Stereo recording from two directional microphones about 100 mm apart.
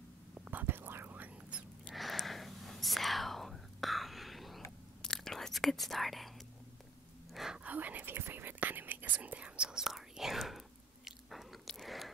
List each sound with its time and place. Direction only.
0.5 s whispering: 20° right (ahead or behind)
1.9 s whispering: centre (ahead or behind)
7.3 s whispering: 5° right (ahead or behind)
11.1 s biting: centre (ahead or behind)